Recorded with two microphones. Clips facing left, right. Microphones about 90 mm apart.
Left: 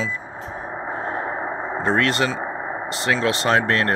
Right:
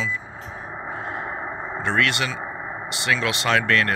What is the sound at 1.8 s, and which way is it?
Speech, 40° left (ahead or behind).